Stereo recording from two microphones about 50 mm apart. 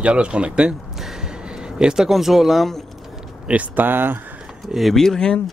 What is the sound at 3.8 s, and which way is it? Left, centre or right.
Speech, right.